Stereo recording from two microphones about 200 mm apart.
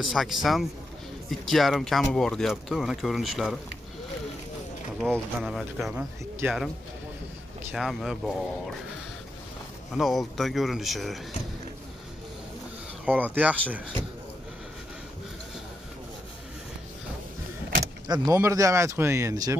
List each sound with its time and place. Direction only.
0.0 s speech: centre (ahead or behind)
5.0 s speech: centre (ahead or behind)
7.7 s speech: centre (ahead or behind)
9.9 s speech: centre (ahead or behind)
13.0 s speech: 10° right (ahead or behind)
18.0 s speech: 20° right (ahead or behind)